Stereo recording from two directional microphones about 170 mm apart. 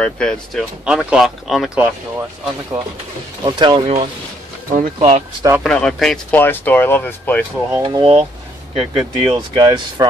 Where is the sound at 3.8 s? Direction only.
40° right (ahead or behind).